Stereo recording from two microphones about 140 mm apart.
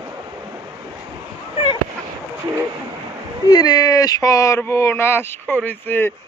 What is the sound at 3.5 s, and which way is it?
Speech, 30° left (ahead or behind).